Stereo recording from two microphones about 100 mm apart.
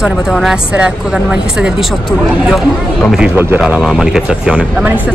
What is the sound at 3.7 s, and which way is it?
Speech, 5° right (ahead or behind).